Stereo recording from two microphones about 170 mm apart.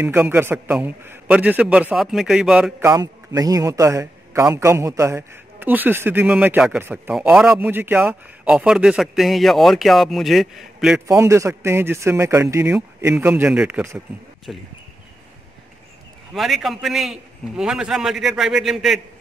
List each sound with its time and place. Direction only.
0.0 s a man's voice: 10° right (ahead or behind)
2.8 s a man's voice: 20° right (ahead or behind); by 11.0 s centre (ahead or behind)
11.1 s a man's voice: 15° right (ahead or behind)
16.3 s a man's voice: centre (ahead or behind)